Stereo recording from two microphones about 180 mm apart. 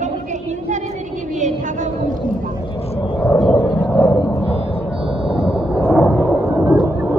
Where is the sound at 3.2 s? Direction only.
5° left (ahead or behind).